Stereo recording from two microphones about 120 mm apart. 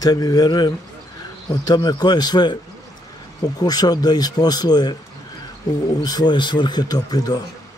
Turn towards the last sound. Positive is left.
turn(degrees=35)  # may be behind; listen again after turning